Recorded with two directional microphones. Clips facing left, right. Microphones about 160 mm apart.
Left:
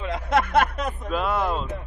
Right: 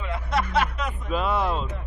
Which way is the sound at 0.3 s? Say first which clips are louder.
Left 4 dB; 55° left (ahead or behind).